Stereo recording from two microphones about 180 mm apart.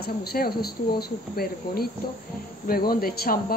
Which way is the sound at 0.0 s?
60° left (ahead or behind).